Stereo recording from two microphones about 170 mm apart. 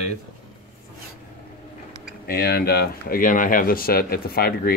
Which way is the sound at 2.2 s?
65° left (ahead or behind).